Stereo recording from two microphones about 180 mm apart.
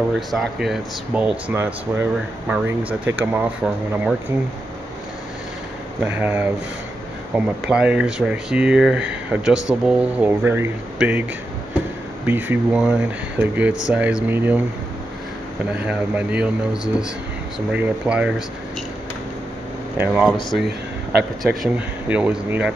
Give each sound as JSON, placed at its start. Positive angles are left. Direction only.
{"t": 0.3, "sound": "speech", "side_deg": 0}
{"t": 5.9, "sound": "speech", "side_deg": -10}
{"t": 12.3, "sound": "speech", "side_deg": -10}
{"t": 15.6, "sound": "speech", "side_deg": -5}
{"t": 20.0, "sound": "speech", "side_deg": -5}
{"t": 20.6, "sound": "a sound", "side_deg": -65}
{"t": 21.4, "sound": "speech", "side_deg": -5}